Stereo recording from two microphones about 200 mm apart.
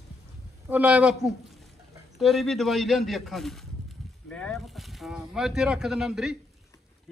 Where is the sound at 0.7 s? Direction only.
5° right (ahead or behind).